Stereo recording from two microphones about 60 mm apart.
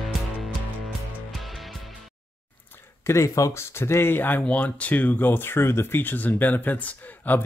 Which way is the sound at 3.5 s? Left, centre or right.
Left.